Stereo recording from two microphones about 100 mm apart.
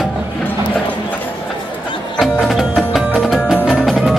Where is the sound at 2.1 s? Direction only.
Centre (ahead or behind).